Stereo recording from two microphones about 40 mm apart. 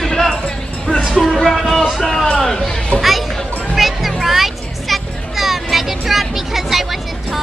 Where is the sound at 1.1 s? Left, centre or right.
Centre.